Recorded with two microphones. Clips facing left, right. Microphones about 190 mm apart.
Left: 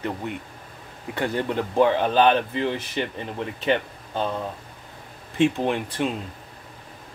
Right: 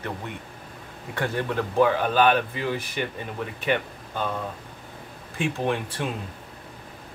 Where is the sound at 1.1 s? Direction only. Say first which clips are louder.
Left 2 dB; 20° left (ahead or behind).